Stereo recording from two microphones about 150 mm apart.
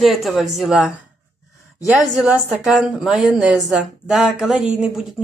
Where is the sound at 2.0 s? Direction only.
5° right (ahead or behind).